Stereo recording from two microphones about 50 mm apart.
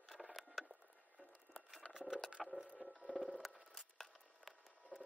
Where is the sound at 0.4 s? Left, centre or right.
Centre.